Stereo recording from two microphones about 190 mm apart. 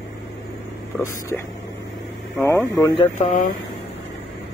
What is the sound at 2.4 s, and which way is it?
Speech, 15° left (ahead or behind).